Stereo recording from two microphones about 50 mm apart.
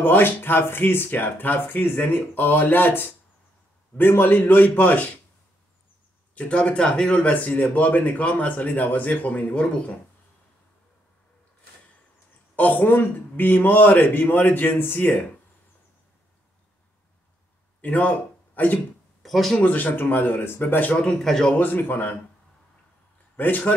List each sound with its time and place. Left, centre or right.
0.0 s speech: left
4.1 s speech: left
6.3 s speech: left
7.3 s speech: left
12.5 s speech: left
17.8 s speech: left
19.2 s a sound: centre
19.6 s speech: left
21.2 s speech: centre
21.5 s speech: left
23.3 s a man's voice: left